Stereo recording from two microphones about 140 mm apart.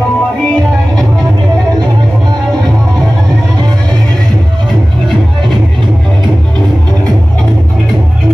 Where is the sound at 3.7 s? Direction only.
5° left (ahead or behind).